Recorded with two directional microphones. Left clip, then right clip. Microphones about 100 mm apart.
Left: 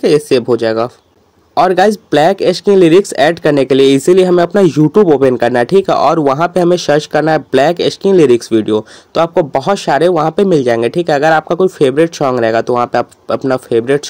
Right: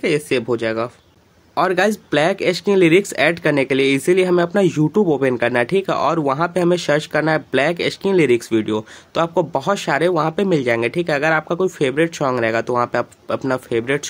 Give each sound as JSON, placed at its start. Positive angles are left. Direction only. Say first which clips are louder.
{"t": 0.0, "sound": "speech", "louder": "left 9 dB", "side_deg": 45}